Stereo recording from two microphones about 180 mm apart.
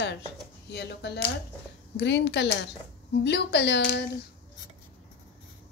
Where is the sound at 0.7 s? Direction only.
70° left (ahead or behind).